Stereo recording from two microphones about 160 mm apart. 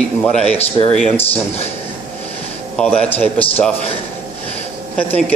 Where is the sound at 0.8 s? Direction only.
30° left (ahead or behind).